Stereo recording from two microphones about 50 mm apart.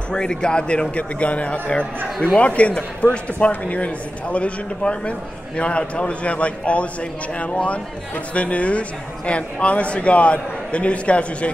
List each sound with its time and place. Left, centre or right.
0.1 s a man's voice: centre